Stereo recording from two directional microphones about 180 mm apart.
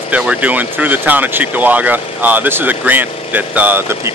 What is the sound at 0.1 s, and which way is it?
Speech, 5° right (ahead or behind).